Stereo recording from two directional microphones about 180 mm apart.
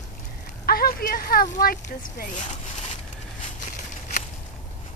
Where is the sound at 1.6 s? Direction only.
55° left (ahead or behind).